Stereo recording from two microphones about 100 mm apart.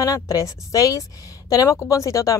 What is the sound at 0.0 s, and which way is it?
A woman's voice, 35° left (ahead or behind).